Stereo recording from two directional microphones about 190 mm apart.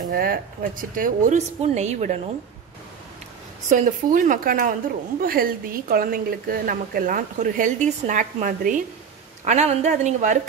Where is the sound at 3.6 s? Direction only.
40° right (ahead or behind).